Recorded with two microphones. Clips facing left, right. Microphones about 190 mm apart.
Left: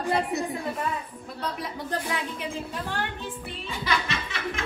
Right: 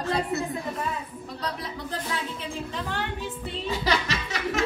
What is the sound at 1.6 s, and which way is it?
Speech, 10° left (ahead or behind).